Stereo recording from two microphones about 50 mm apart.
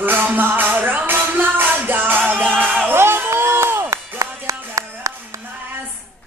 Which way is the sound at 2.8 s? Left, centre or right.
Right.